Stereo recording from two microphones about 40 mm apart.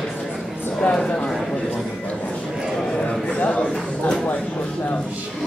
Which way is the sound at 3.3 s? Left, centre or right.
Left.